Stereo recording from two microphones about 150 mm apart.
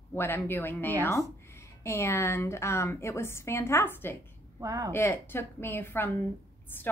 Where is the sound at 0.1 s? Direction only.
15° left (ahead or behind).